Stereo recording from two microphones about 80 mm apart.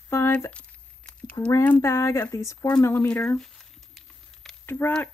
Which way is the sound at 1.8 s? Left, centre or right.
Left.